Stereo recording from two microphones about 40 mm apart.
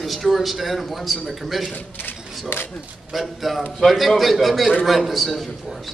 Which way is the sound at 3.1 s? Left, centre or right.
Centre.